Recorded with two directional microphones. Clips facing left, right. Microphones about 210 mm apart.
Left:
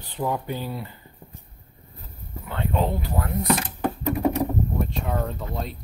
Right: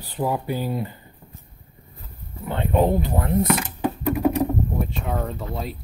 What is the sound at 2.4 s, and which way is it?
Speech, 20° right (ahead or behind).